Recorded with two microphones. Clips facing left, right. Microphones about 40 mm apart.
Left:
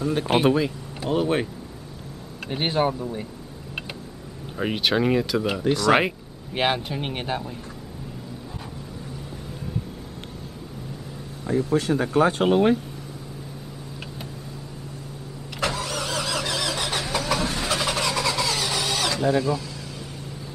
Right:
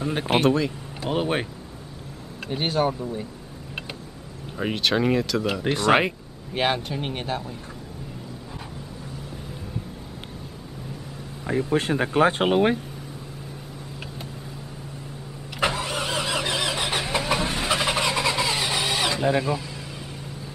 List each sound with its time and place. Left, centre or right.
0.0 s speech: right
0.4 s speech: centre
1.1 s speech: right
2.4 s speech: centre
4.6 s speech: centre
5.6 s speech: right
6.5 s speech: centre
11.4 s speech: right
15.6 s vehicle: right